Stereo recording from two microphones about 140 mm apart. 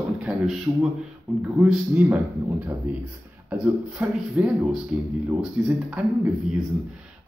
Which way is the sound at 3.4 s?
10° right (ahead or behind).